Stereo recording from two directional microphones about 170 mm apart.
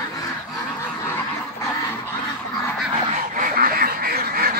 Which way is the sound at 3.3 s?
55° right (ahead or behind).